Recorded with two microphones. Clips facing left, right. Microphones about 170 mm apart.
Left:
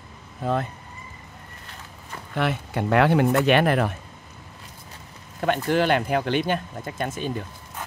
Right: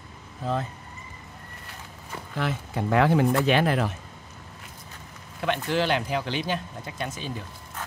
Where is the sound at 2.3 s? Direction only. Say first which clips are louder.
Left 4 dB; 65° left (ahead or behind).